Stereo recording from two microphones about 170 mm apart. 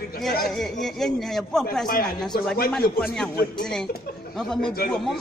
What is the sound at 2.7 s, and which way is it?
Speech, 5° left (ahead or behind).